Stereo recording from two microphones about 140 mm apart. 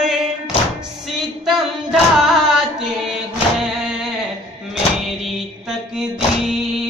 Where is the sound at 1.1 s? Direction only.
Centre (ahead or behind).